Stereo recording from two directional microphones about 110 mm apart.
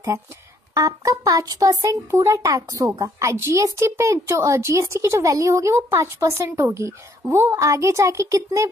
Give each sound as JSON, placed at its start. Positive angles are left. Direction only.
{"t": 0.7, "sound": "speech", "side_deg": -30}